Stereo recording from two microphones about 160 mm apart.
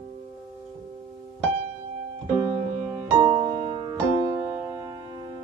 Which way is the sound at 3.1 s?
20° right (ahead or behind).